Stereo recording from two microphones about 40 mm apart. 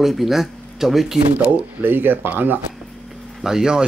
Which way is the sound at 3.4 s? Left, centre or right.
Centre.